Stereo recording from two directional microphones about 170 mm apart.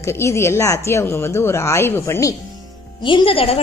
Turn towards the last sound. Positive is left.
turn(degrees=35)  # may be behind; listen again after turning